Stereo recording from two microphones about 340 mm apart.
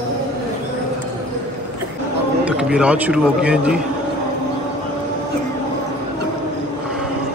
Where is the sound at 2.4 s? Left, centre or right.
Centre.